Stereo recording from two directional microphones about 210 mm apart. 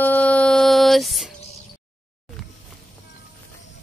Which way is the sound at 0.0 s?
5° left (ahead or behind).